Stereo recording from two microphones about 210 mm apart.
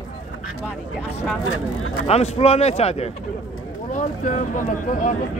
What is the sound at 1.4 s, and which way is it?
Speech, 90° left.